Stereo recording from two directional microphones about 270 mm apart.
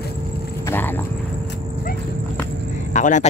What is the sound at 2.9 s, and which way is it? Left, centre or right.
Vehicle, left.